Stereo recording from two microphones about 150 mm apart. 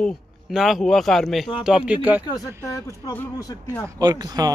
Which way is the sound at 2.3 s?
20° left (ahead or behind).